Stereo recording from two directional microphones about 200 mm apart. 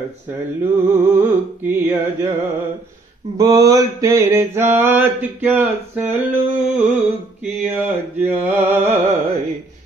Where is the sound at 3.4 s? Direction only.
15° right (ahead or behind).